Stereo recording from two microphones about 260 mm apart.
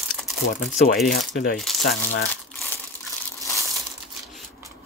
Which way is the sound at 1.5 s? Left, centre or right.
Centre.